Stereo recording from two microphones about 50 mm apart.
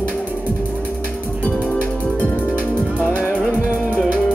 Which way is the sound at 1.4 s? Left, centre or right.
Left.